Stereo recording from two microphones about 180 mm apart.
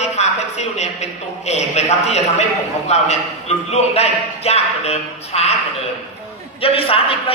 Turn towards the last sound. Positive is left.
turn(degrees=30)  # may be behind; listen again after turning